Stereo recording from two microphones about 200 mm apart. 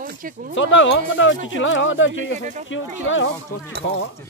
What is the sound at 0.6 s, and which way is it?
Speech, 70° left (ahead or behind).